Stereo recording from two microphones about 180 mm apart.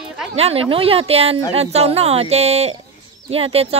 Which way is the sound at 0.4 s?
35° right (ahead or behind).